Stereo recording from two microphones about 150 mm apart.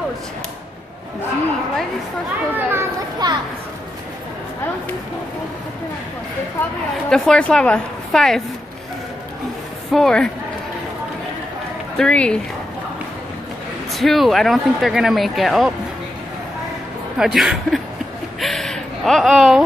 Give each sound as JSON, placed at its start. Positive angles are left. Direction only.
{"t": 2.5, "sound": "children playing", "side_deg": -15}
{"t": 3.2, "sound": "a child's voice", "side_deg": -30}
{"t": 7.1, "sound": "speech", "side_deg": 5}
{"t": 9.9, "sound": "speech", "side_deg": 5}
{"t": 12.0, "sound": "speech", "side_deg": 5}
{"t": 13.9, "sound": "speech", "side_deg": 0}
{"t": 17.2, "sound": "speech", "side_deg": -5}
{"t": 18.4, "sound": "a sound", "side_deg": 5}